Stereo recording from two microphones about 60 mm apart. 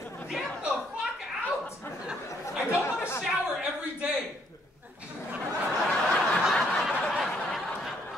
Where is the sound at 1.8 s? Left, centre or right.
Left.